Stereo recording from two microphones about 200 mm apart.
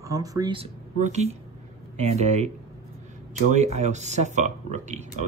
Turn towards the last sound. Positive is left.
turn(degrees=-35)  # may be behind; listen again after turning